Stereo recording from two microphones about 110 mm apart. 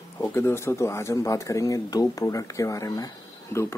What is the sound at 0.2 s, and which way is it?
Speech, 20° left (ahead or behind).